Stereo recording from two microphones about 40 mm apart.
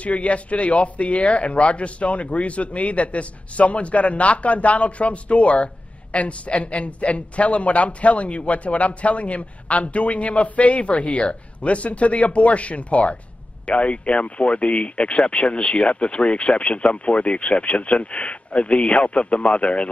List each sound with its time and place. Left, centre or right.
0.0 s a man's voice: left